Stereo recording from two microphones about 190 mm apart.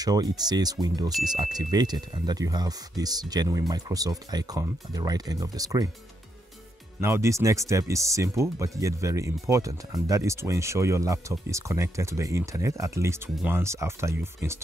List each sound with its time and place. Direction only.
0.0 s speech: 20° right (ahead or behind)
7.0 s speech: 15° right (ahead or behind)